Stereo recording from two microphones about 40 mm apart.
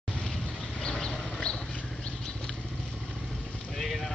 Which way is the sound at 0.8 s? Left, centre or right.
Left.